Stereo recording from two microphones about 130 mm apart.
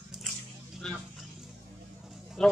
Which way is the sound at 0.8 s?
5° left (ahead or behind).